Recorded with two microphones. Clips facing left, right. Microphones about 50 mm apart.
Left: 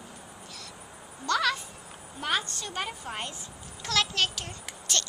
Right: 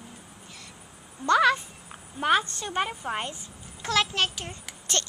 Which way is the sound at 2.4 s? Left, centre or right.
Right.